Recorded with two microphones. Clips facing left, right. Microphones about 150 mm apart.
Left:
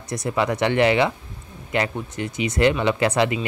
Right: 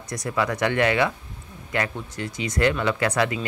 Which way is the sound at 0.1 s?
25° left (ahead or behind).